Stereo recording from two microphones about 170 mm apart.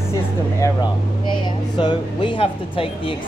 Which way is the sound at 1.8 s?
25° left (ahead or behind).